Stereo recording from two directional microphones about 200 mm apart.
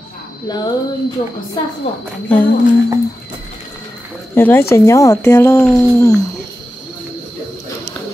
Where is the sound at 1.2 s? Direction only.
40° left (ahead or behind).